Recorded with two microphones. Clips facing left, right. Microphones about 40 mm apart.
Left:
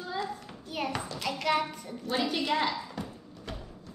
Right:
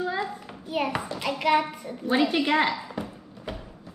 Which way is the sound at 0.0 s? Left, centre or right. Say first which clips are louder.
Right 6 dB; right.